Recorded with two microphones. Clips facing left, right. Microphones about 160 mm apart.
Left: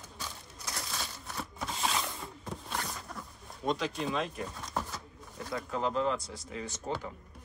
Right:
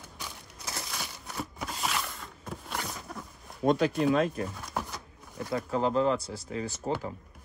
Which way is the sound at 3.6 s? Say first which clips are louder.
Right 7 dB; 50° right (ahead or behind).